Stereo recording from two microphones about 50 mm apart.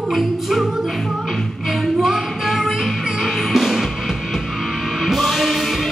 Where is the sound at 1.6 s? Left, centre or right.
Centre.